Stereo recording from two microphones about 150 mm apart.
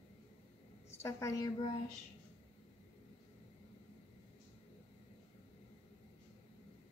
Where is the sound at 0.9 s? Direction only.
20° left (ahead or behind).